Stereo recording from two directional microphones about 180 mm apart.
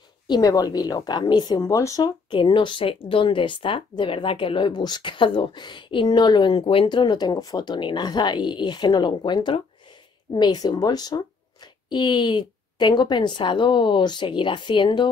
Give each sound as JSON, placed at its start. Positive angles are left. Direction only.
{"t": 0.3, "sound": "speech", "side_deg": 20}